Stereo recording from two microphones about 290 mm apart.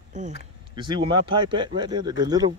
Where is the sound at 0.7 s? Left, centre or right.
Centre.